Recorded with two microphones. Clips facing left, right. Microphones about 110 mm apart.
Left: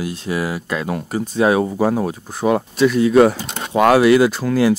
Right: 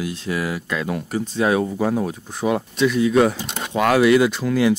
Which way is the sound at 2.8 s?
Centre (ahead or behind).